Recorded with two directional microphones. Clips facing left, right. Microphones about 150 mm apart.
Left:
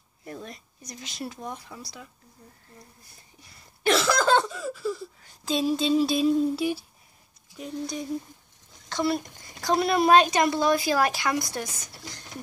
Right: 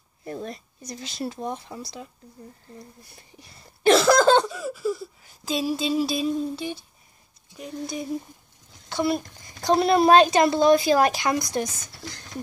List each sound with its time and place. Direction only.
0.2 s speech: 35° right (ahead or behind)
3.8 s cough: 40° right (ahead or behind)
4.5 s speech: 10° right (ahead or behind)
9.6 s a woman's voice: 25° right (ahead or behind)